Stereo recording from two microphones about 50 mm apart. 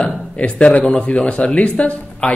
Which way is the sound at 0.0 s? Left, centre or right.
Left.